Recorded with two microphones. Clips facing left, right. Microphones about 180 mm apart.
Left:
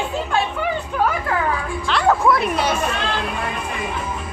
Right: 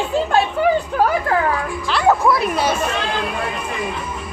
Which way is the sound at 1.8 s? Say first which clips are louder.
Right 1 dB; 5° right (ahead or behind).